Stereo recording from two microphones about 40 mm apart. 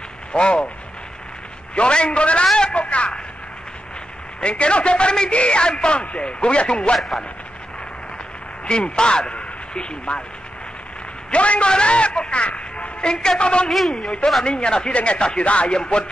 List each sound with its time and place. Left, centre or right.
0.3 s speech: left
1.8 s speech: left
2.4 s a man's voice: centre
2.7 s speech: left
4.4 s speech: left
8.6 s speech: left
11.2 s a man's voice: left
13.7 s a man's voice: centre
14.4 s speech: left